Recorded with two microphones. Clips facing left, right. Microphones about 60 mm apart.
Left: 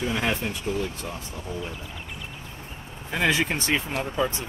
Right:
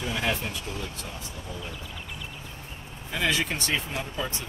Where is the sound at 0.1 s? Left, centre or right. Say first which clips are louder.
Right 1 dB; left.